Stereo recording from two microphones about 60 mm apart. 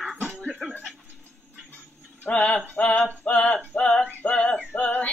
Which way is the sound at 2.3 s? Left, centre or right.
Left.